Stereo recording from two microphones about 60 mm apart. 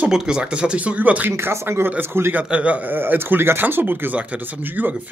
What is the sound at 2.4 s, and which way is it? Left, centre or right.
Speech, right.